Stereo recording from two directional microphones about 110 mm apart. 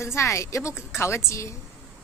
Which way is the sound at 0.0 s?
25° left (ahead or behind).